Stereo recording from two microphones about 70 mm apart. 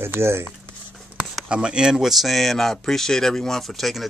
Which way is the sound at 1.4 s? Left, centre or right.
Centre.